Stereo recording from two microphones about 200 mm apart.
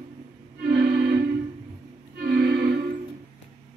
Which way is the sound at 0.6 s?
55° right (ahead or behind).